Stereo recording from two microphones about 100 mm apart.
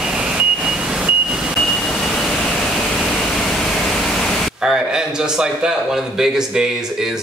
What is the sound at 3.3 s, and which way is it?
A man's voice, 5° left (ahead or behind).